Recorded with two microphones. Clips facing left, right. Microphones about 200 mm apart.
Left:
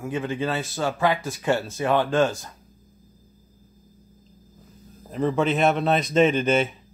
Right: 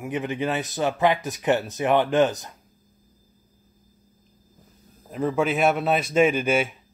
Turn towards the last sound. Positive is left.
turn(degrees=-10)  # may be behind; listen again after turning